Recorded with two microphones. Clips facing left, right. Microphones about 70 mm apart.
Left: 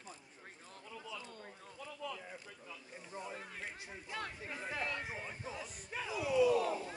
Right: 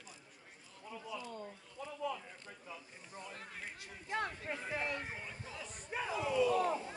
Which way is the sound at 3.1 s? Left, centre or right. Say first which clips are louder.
Left 3 dB; centre.